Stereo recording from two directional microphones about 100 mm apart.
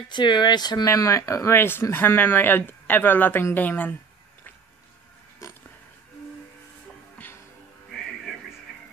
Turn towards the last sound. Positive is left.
turn(degrees=25)  # may be behind; listen again after turning